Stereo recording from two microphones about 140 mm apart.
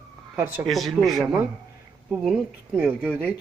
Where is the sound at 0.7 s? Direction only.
Centre (ahead or behind).